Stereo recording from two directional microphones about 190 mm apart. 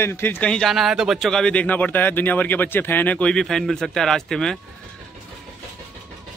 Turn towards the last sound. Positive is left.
turn(degrees=5)  # may be behind; listen again after turning